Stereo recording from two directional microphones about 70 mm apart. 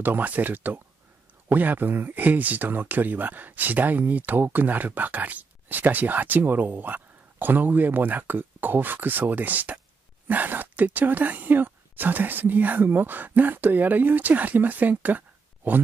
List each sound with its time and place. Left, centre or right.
0.0 s speech: right